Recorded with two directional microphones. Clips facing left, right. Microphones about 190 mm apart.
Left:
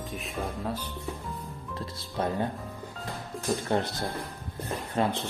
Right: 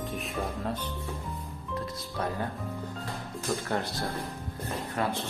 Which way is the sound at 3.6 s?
20° left (ahead or behind).